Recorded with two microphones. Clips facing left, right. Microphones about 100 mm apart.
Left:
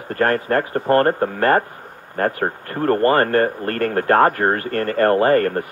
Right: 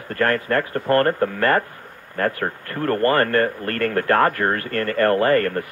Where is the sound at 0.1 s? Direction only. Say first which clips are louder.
Left 2 dB; 30° left (ahead or behind).